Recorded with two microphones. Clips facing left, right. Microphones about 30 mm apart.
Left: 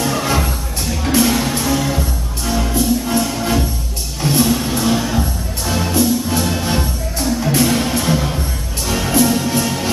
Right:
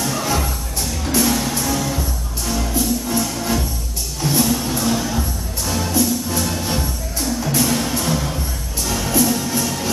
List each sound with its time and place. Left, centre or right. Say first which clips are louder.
0.0 s music: left 3 dB; left